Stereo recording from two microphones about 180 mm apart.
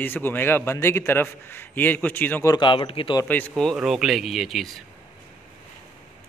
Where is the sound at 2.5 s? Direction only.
25° left (ahead or behind).